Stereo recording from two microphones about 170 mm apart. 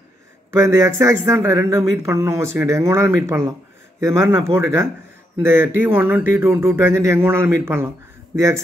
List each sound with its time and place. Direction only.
0.5 s speech: 15° right (ahead or behind)